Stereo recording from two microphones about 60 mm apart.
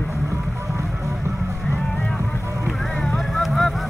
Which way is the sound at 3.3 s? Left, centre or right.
Centre.